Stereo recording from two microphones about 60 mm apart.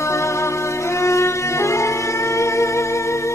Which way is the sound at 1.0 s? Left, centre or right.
Left.